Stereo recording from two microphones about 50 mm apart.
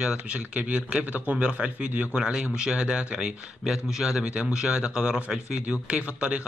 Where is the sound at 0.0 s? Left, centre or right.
Centre.